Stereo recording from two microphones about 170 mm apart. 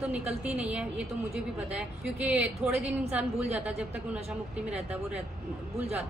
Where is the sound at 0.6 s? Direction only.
10° right (ahead or behind).